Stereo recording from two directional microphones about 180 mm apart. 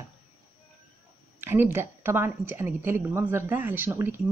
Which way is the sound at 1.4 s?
15° right (ahead or behind).